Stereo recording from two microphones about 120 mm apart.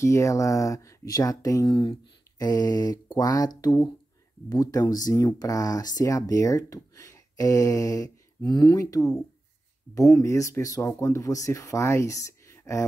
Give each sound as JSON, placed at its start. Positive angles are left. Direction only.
{"t": 0.0, "sound": "speech", "side_deg": 25}